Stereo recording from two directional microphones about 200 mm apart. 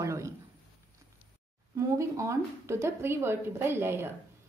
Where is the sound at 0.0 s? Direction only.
15° right (ahead or behind).